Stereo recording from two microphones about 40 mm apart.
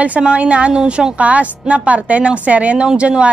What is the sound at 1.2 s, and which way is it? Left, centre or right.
Speech, right.